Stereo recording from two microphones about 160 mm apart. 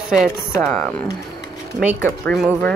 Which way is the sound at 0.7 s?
5° left (ahead or behind).